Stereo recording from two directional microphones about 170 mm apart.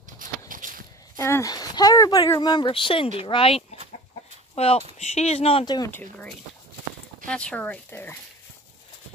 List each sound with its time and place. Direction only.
0.5 s walk: 50° right (ahead or behind)
1.1 s speech: 15° left (ahead or behind); by 5.8 s 35° left (ahead or behind)
5.9 s speech: 10° left (ahead or behind)